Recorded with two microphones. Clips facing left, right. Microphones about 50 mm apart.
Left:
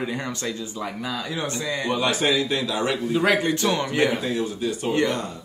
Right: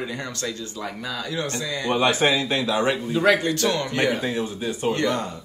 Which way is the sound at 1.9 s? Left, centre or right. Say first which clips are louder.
Right 3 dB; right.